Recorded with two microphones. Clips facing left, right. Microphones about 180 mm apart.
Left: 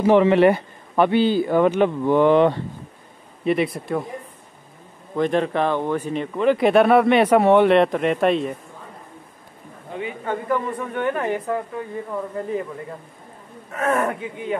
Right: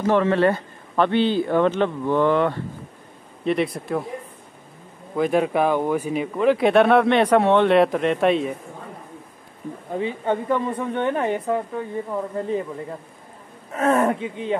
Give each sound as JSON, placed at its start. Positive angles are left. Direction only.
{"t": 0.0, "sound": "speech", "side_deg": 15}
{"t": 3.4, "sound": "speech", "side_deg": 0}
{"t": 5.1, "sound": "speech", "side_deg": -5}
{"t": 9.9, "sound": "a woman's voice", "side_deg": -25}
{"t": 13.7, "sound": "a woman's voice", "side_deg": -25}